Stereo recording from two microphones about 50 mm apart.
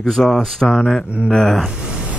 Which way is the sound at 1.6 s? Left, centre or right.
Centre.